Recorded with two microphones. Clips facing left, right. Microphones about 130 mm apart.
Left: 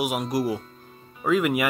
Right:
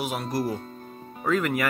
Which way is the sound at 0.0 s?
10° left (ahead or behind).